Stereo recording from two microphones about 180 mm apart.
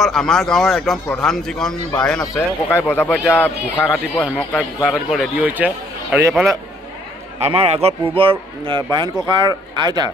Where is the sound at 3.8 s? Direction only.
5° right (ahead or behind).